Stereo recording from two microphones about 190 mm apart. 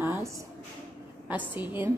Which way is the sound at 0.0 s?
15° right (ahead or behind).